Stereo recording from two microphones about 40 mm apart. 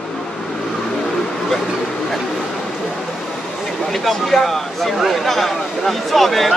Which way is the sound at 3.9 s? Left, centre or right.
Centre.